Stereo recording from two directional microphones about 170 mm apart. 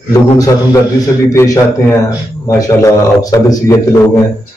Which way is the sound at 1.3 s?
20° left (ahead or behind).